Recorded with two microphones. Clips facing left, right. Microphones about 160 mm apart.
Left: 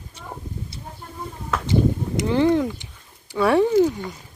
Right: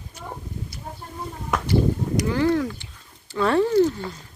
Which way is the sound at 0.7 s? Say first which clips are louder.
Even; 30° left (ahead or behind).